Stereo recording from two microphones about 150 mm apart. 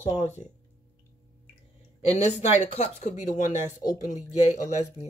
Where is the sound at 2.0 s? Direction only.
45° left (ahead or behind).